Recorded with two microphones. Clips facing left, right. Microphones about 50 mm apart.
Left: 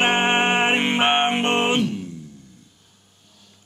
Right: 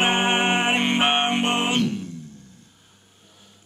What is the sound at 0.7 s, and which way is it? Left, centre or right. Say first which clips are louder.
Music: left 2 dB; centre.